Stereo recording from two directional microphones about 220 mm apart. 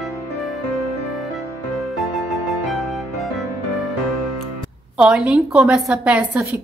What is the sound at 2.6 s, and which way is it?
Music, centre (ahead or behind).